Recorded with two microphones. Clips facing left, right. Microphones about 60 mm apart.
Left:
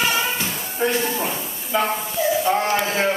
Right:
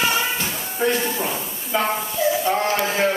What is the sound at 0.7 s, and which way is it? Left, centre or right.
Speech, centre.